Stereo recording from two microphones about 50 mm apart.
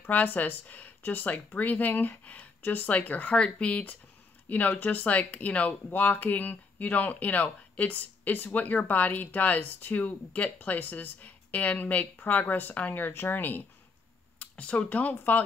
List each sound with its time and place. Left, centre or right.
0.0 s speech: left
2.6 s speech: left
3.3 s speech: left
4.5 s speech: left
5.9 s speech: left
14.4 s speech: left